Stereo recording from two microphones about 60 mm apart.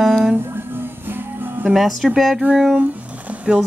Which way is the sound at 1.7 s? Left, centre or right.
Centre.